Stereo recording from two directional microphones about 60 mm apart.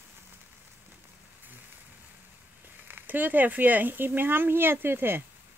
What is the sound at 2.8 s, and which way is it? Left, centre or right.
Speech, right.